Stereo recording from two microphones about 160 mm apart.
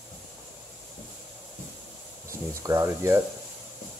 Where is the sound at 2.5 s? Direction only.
20° right (ahead or behind).